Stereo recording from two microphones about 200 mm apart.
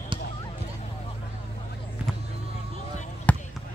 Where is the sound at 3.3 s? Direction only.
5° left (ahead or behind).